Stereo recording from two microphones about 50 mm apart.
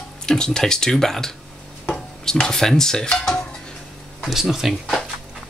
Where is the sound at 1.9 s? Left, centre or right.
Centre.